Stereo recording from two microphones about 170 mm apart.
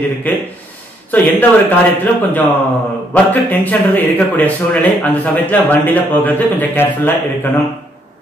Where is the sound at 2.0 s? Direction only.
10° left (ahead or behind).